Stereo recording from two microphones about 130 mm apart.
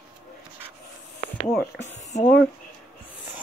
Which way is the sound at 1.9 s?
65° left (ahead or behind).